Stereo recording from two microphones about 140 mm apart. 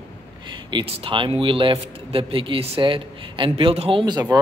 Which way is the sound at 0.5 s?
35° right (ahead or behind).